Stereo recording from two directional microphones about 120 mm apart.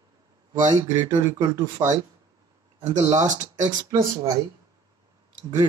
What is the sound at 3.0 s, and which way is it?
Speech, 35° right (ahead or behind).